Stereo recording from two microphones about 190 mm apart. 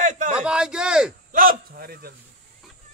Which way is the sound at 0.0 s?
45° right (ahead or behind).